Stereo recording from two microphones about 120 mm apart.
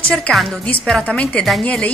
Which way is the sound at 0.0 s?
10° left (ahead or behind).